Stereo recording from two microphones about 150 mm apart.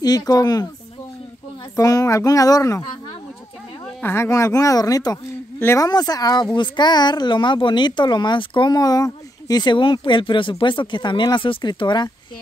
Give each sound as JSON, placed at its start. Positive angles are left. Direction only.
{"t": 0.0, "sound": "speech", "side_deg": 25}
{"t": 1.8, "sound": "speech", "side_deg": 20}
{"t": 4.0, "sound": "speech", "side_deg": 15}